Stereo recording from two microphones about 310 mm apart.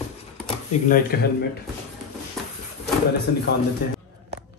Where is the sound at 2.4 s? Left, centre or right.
Centre.